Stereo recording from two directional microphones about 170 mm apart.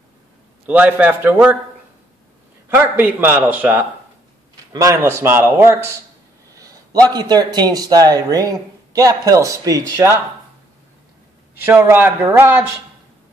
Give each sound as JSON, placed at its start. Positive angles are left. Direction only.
{"t": 0.7, "sound": "a man's voice", "side_deg": -10}
{"t": 2.7, "sound": "a man's voice", "side_deg": -10}
{"t": 6.5, "sound": "a sound", "side_deg": -20}
{"t": 7.1, "sound": "speech", "side_deg": -25}
{"t": 11.6, "sound": "a man's voice", "side_deg": -10}